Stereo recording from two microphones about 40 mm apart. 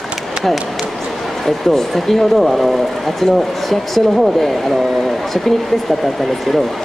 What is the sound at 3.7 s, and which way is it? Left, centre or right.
Speech, centre.